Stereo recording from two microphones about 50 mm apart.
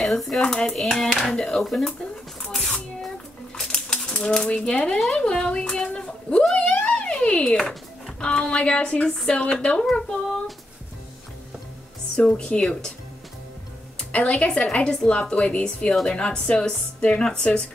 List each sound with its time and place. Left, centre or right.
0.0 s speech: centre
3.5 s typewriter: centre
5.1 s a sound: centre
8.2 s a woman's voice: centre
12.2 s a woman's voice: centre
13.9 s music: left
14.3 s a woman's voice: left